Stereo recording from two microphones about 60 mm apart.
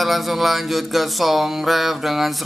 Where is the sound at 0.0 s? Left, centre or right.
Centre.